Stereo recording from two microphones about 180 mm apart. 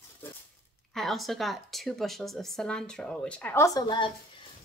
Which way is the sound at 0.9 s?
Centre (ahead or behind).